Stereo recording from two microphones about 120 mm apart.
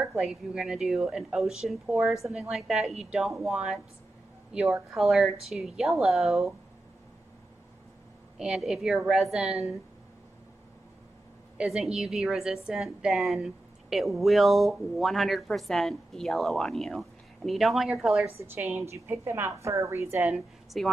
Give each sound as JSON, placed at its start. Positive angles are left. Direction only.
{"t": 0.2, "sound": "a woman's voice", "side_deg": -5}
{"t": 8.4, "sound": "a woman's voice", "side_deg": -5}
{"t": 11.5, "sound": "a woman's voice", "side_deg": -5}
{"t": 18.4, "sound": "a woman's voice", "side_deg": -20}
{"t": 20.2, "sound": "a woman's voice", "side_deg": -5}